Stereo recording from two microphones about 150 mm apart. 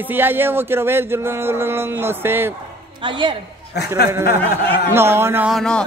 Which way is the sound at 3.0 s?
35° right (ahead or behind).